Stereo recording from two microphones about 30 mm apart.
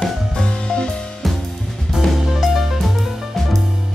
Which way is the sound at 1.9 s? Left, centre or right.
Centre.